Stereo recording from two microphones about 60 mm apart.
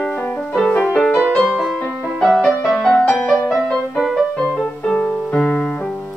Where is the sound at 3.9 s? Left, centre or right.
Centre.